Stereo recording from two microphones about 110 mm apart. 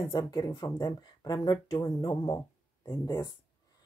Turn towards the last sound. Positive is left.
turn(degrees=40)  # may be behind; listen again after turning